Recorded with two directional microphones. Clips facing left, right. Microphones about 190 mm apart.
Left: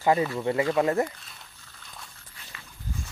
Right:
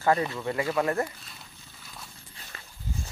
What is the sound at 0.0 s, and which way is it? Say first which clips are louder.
Speech: left 2 dB; 15° left (ahead or behind).